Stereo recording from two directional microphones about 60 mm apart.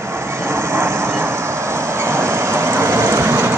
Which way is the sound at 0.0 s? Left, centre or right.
Right.